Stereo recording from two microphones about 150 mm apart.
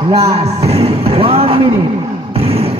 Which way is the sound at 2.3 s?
40° right (ahead or behind).